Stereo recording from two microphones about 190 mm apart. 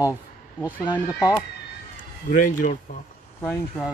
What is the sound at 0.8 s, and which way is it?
Speech, 20° left (ahead or behind).